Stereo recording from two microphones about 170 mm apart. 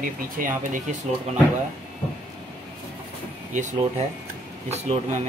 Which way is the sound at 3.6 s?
45° right (ahead or behind).